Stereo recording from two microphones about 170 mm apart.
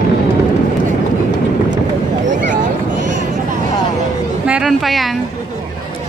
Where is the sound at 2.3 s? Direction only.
50° right (ahead or behind).